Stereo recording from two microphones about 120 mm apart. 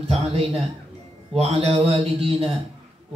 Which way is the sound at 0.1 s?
60° right (ahead or behind).